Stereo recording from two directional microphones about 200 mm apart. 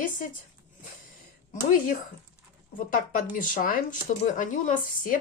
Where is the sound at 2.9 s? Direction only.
45° left (ahead or behind).